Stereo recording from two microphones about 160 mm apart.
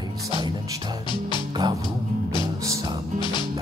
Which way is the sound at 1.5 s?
20° right (ahead or behind).